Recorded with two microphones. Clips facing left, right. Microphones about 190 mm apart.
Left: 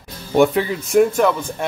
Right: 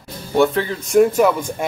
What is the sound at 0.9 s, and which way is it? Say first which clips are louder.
Speech: right 2 dB; centre (ahead or behind).